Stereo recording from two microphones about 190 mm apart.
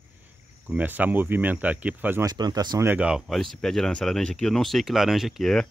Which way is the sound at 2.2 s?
20° right (ahead or behind).